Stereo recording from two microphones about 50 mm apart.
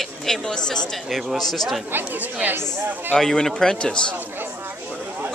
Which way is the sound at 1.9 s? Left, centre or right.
Right.